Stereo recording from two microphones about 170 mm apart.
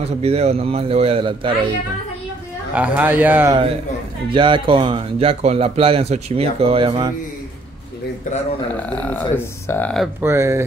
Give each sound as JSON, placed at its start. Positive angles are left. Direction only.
{"t": 0.2, "sound": "speech", "side_deg": -40}
{"t": 2.7, "sound": "speech", "side_deg": -10}
{"t": 4.3, "sound": "speech", "side_deg": -30}
{"t": 8.9, "sound": "speech", "side_deg": 10}
{"t": 10.2, "sound": "speech", "side_deg": -15}